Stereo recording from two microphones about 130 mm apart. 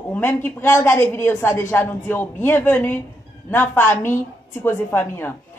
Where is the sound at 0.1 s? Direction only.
15° left (ahead or behind).